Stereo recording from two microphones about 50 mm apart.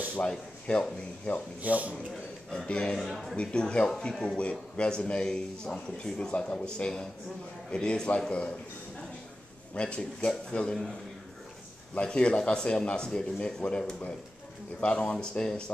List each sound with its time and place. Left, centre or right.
0.3 s a man's voice: centre
1.6 s speech: right
2.5 s speech: centre
3.0 s a man's voice: centre
3.3 s a man's voice: centre
9.8 s a man's voice: left
11.9 s a man's voice: left